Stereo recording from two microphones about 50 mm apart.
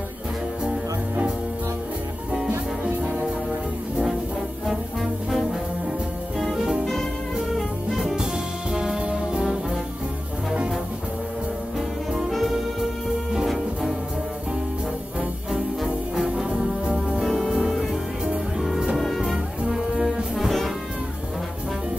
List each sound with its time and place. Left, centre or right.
2.8 s music: centre
6.3 s music: centre
6.8 s music: centre
8.7 s brass instrument: centre
12.3 s music: centre
16.4 s music: centre
17.2 s music: centre
18.6 s music: centre
18.9 s music: centre
19.7 s brass instrument: centre